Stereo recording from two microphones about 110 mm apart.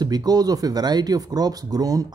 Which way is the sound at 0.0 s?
35° right (ahead or behind).